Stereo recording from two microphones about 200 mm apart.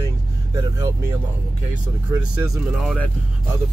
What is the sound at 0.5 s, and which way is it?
Speech, 15° right (ahead or behind).